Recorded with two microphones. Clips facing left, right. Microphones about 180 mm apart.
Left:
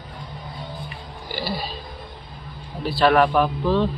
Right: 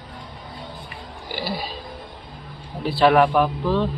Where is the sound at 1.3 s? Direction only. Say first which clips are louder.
Even; 15° right (ahead or behind).